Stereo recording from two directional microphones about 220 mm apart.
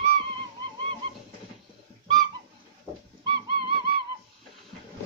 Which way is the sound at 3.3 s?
20° right (ahead or behind).